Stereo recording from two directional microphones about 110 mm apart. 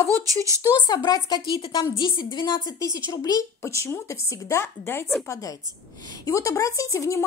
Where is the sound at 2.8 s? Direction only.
30° left (ahead or behind).